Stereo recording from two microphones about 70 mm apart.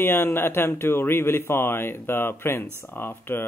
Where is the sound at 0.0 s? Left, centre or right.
Left.